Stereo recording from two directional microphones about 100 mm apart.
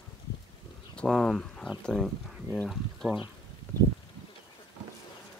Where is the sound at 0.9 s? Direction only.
5° left (ahead or behind).